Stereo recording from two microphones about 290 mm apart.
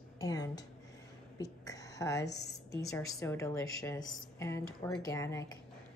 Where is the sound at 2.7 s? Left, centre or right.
Centre.